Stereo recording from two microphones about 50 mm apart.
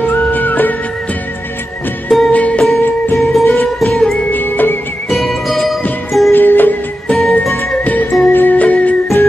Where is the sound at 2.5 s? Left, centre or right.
Centre.